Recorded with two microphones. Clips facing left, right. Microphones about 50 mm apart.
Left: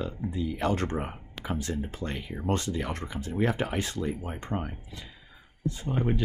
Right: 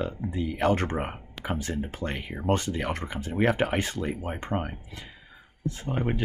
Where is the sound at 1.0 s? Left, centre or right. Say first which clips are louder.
Right 2 dB; right.